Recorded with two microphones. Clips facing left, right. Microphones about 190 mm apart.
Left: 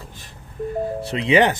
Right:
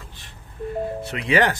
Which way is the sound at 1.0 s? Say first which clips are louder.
Left 4 dB; 25° left (ahead or behind).